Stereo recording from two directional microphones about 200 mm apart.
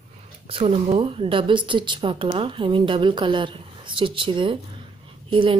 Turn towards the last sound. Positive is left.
turn(degrees=-25)  # may be behind; listen again after turning